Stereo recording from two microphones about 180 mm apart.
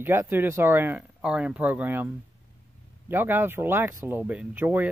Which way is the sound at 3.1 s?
10° right (ahead or behind).